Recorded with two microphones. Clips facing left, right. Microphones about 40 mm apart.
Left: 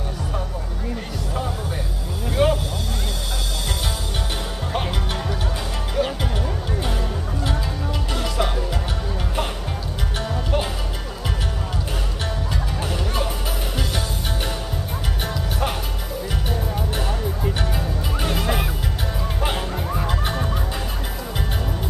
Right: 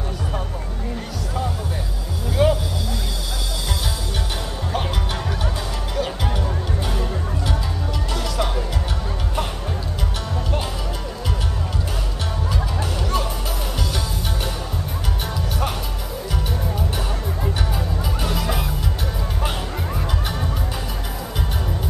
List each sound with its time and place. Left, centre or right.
2.4 s vehicle: centre
8.1 s music: centre
18.2 s music: left
20.1 s music: left